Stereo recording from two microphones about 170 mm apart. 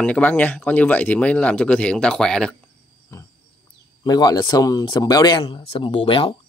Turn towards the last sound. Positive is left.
turn(degrees=30)  # may be behind; listen again after turning